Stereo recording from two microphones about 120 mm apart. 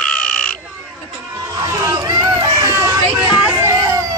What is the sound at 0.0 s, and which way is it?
Crow, 10° left (ahead or behind).